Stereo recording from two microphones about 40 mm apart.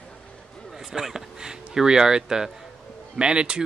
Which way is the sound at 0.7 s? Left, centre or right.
Centre.